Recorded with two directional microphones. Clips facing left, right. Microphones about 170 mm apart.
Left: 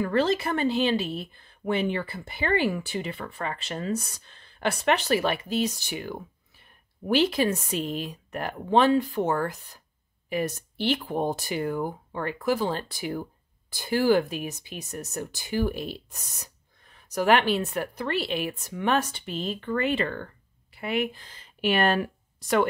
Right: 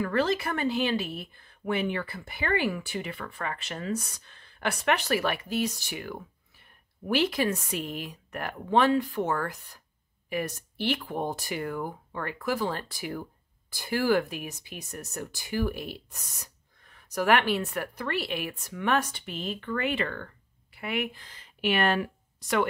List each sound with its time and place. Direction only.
0.0 s speech: 25° left (ahead or behind)